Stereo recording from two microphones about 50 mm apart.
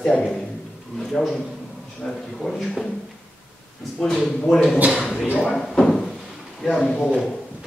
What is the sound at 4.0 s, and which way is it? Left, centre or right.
A man's voice, centre.